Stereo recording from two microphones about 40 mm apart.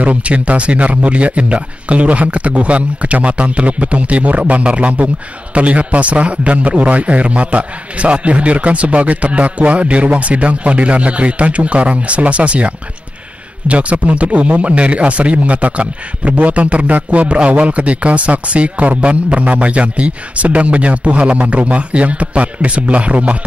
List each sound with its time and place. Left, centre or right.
0.0 s speech: right